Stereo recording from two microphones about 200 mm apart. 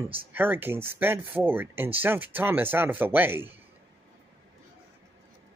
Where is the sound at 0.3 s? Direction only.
10° right (ahead or behind).